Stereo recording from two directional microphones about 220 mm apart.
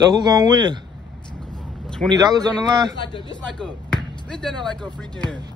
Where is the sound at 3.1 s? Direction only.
20° left (ahead or behind).